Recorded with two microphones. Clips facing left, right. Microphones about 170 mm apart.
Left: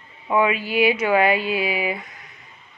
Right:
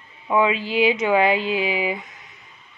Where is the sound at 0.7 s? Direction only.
20° right (ahead or behind).